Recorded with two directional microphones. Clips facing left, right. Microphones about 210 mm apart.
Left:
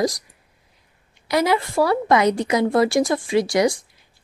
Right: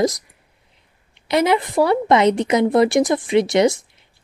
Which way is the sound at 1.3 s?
20° right (ahead or behind).